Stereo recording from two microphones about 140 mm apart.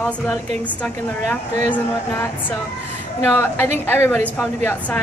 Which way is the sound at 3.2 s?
15° left (ahead or behind).